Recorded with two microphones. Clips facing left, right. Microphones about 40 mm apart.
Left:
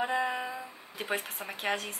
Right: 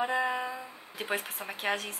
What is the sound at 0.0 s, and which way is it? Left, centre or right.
A woman's voice, centre.